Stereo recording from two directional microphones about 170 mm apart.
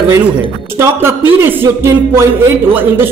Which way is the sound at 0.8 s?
15° right (ahead or behind).